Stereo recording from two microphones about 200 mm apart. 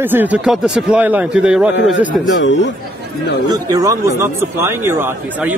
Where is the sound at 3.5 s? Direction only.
20° right (ahead or behind).